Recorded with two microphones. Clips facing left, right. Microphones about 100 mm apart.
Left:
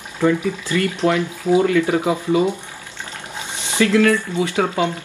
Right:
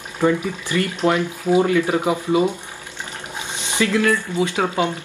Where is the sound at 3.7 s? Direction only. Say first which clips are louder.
Left 3 dB; 20° right (ahead or behind).